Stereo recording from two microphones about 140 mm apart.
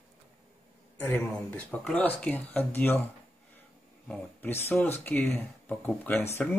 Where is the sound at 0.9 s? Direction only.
10° left (ahead or behind).